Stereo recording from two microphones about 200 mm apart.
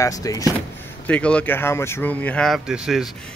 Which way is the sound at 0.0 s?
15° left (ahead or behind).